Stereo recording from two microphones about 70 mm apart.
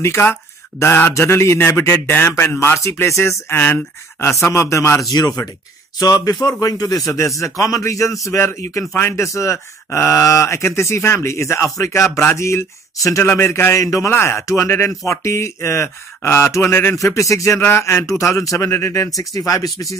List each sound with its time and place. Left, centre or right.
0.2 s speech: left
2.0 s speech: left
4.5 s speech: left
5.1 s speech: left
7.2 s speech: left
13.2 s speech: left
13.8 s speech: left
14.1 s speech: left
17.0 s speech: left
17.6 s speech: left
18.0 s speech: left